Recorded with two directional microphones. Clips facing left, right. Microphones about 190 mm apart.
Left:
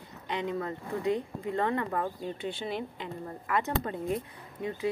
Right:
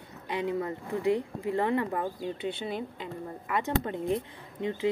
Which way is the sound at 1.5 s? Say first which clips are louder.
Right 2 dB; 15° right (ahead or behind).